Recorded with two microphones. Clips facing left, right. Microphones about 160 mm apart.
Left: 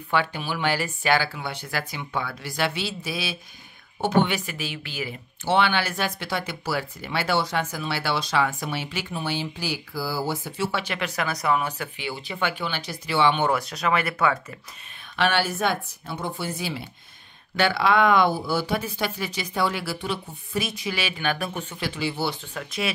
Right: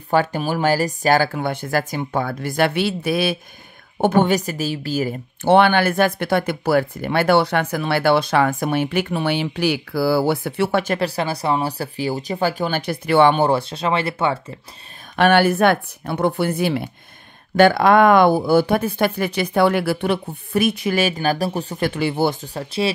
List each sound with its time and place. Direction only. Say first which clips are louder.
0.1 s speech: right 7 dB; 45° right (ahead or behind)
11.1 s speech: right 4 dB; 30° right (ahead or behind); by 13.4 s 50° right (ahead or behind)
13.4 s speech: right 6 dB; 30° right (ahead or behind)
15.1 s speech: right 9 dB; 55° right (ahead or behind); by 21.8 s 35° right (ahead or behind)
21.8 s speech: right 8 dB; 55° right (ahead or behind); by 22.9 s 30° right (ahead or behind)